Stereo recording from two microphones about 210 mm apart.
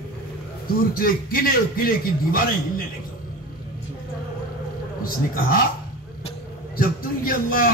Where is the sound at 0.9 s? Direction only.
45° left (ahead or behind).